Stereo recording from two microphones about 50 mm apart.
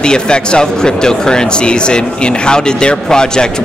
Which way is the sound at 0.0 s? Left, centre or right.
Centre.